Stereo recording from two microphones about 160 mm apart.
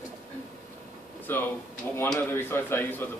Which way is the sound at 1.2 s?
15° left (ahead or behind).